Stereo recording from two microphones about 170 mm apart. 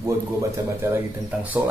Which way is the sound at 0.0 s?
15° right (ahead or behind).